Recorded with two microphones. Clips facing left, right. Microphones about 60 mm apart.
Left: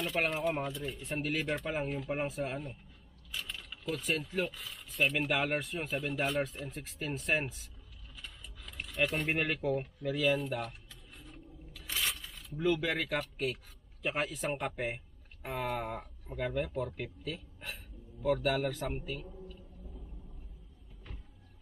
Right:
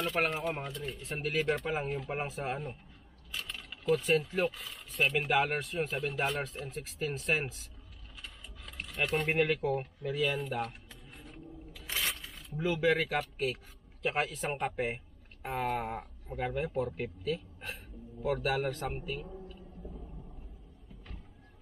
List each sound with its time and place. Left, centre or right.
0.0 s speech: centre
3.3 s mechanisms: centre
4.1 s speech: centre
8.2 s mechanisms: centre
9.8 s speech: centre
11.3 s a sound: centre
12.3 s a sound: centre
12.7 s a man's voice: centre